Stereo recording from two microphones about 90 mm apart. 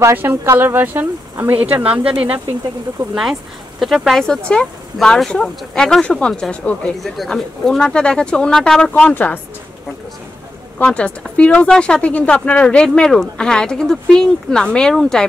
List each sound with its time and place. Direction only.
0.0 s speech: 25° right (ahead or behind)
3.8 s speech: 5° right (ahead or behind); by 6.9 s 15° left (ahead or behind)
7.0 s speech: centre (ahead or behind); by 9.4 s 20° left (ahead or behind)
10.8 s speech: 10° left (ahead or behind)